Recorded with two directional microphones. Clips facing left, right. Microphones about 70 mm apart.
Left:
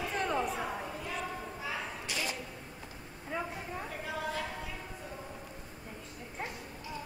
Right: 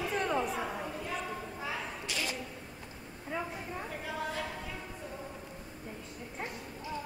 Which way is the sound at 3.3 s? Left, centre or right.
Centre.